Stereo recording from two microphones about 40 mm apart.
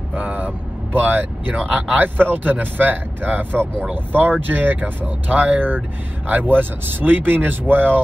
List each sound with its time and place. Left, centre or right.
0.1 s vehicle: right
0.9 s speech: right